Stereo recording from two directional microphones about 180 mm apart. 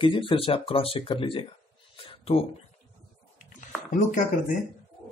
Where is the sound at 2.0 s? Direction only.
30° left (ahead or behind).